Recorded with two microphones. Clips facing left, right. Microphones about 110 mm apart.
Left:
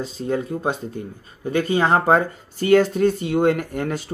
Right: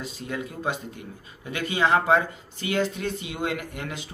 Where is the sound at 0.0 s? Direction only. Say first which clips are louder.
Left 8 dB; 35° left (ahead or behind).